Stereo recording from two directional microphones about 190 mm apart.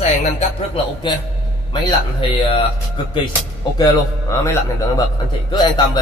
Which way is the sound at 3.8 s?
15° left (ahead or behind).